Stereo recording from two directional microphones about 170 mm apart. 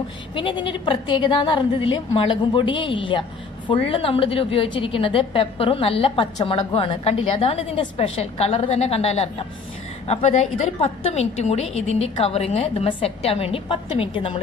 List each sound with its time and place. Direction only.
0.4 s a woman's voice: 30° left (ahead or behind)